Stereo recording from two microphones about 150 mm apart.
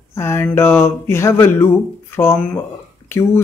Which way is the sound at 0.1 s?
15° left (ahead or behind).